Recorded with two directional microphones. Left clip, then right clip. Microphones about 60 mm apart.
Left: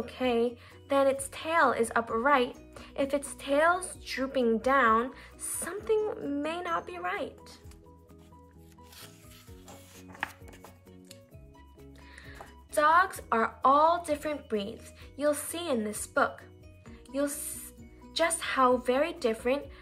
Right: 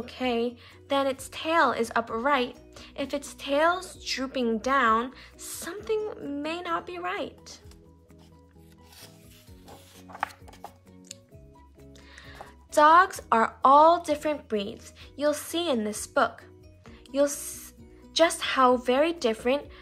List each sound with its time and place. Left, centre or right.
0.0 s a woman's voice: centre
3.3 s a woman's voice: centre
5.4 s a woman's voice: centre; by 7.3 s right
12.2 s speech: right
16.8 s music: right
18.1 s speech: right